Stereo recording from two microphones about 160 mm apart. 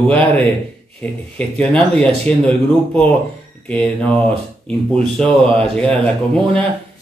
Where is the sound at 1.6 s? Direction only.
5° left (ahead or behind).